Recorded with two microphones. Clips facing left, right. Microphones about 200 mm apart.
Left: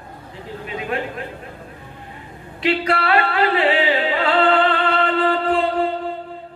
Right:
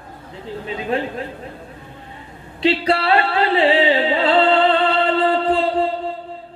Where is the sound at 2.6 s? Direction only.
30° right (ahead or behind).